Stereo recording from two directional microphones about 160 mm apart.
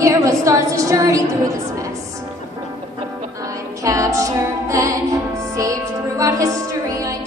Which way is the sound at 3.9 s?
20° right (ahead or behind).